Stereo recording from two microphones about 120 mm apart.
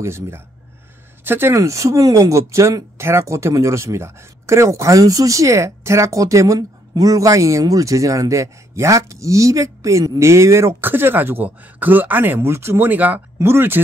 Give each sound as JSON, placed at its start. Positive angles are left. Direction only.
{"t": 0.0, "sound": "speech", "side_deg": -20}